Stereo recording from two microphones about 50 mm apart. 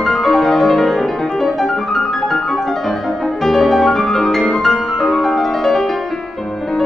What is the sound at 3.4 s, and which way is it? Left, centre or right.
Music, centre.